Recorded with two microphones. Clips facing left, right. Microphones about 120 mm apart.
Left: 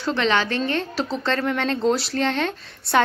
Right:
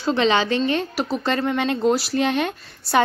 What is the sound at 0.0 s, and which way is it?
A woman's voice, 15° right (ahead or behind).